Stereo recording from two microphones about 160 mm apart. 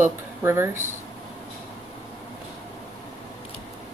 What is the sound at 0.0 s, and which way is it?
Speech, 15° right (ahead or behind).